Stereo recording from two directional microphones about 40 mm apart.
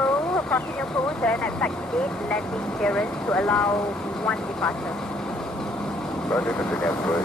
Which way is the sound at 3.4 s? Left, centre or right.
Left.